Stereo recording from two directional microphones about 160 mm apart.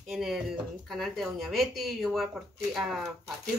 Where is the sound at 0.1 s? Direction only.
Centre (ahead or behind).